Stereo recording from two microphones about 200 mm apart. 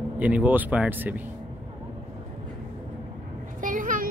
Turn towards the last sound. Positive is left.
turn(degrees=-40)  # may be behind; listen again after turning